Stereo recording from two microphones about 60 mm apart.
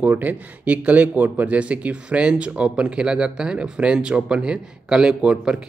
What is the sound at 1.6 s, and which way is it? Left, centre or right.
Speech, right.